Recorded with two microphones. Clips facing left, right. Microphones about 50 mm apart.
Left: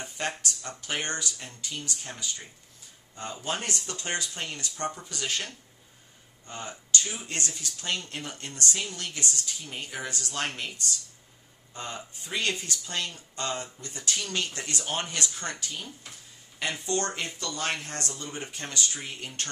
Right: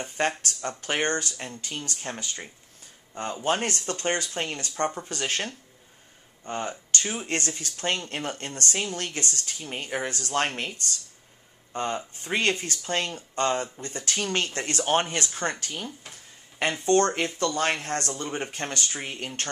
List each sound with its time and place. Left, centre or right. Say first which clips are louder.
0.4 s speech: right 4 dB; right
3.4 s speech: right 7 dB; right
11.7 s speech: right 8 dB; right